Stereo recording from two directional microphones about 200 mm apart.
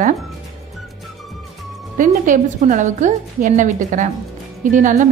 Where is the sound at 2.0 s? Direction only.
40° right (ahead or behind).